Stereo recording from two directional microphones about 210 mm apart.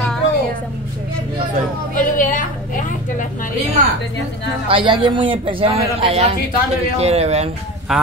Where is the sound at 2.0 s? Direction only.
40° left (ahead or behind).